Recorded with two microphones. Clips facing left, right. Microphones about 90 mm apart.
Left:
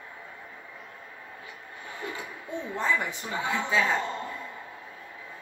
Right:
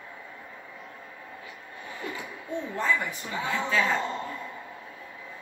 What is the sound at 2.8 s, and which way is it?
A woman's voice, 20° left (ahead or behind).